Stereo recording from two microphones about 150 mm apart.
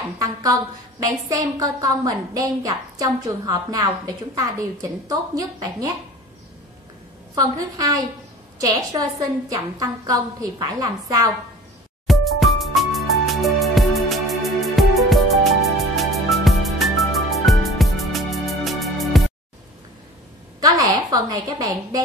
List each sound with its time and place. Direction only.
0.2 s a woman's voice: 25° right (ahead or behind)
7.3 s a woman's voice: 25° right (ahead or behind)
12.1 s music: centre (ahead or behind)
20.6 s a woman's voice: 25° right (ahead or behind)